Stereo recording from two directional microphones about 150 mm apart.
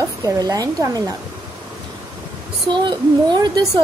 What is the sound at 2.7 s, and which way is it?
A woman's voice, 30° right (ahead or behind).